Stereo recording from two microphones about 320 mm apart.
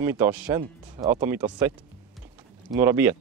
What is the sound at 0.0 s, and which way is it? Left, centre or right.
Speech, centre.